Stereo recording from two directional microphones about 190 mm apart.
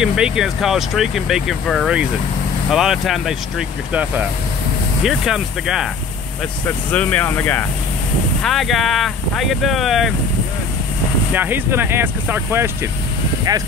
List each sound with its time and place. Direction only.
0.0 s speech: 5° right (ahead or behind)
6.9 s speech: 10° left (ahead or behind)
11.3 s speech: 10° right (ahead or behind)